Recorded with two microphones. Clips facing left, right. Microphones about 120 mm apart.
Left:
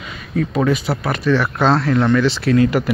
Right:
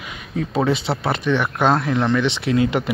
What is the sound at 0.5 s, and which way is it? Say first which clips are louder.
Speech: even; 30° right (ahead or behind).